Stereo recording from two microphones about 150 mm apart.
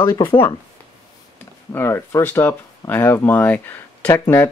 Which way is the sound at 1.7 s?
15° left (ahead or behind).